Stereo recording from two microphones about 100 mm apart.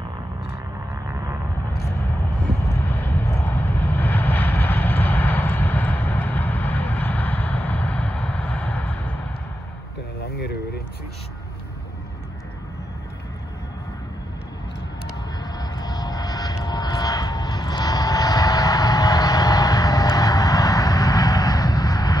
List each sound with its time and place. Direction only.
2.6 s vehicle: 25° left (ahead or behind)
15.5 s vehicle: 40° left (ahead or behind)